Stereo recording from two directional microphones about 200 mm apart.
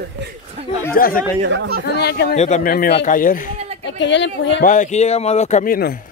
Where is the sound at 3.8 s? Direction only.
65° left (ahead or behind).